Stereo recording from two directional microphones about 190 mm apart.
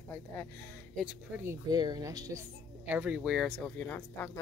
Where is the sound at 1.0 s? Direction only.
10° right (ahead or behind).